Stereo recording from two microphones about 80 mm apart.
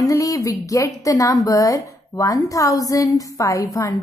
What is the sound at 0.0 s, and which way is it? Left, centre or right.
A woman's voice, left.